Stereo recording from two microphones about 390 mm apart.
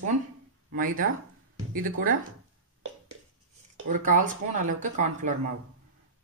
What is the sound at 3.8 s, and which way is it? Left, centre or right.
Speech, centre.